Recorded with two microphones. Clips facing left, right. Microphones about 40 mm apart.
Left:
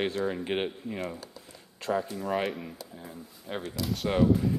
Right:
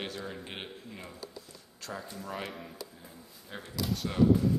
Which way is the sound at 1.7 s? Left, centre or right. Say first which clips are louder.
Left 12 dB; left.